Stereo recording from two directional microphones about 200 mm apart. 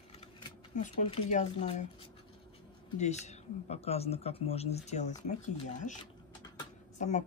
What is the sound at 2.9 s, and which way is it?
Speech, 35° left (ahead or behind).